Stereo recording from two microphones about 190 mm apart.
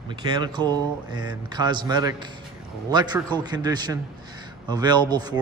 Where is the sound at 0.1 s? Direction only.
25° right (ahead or behind).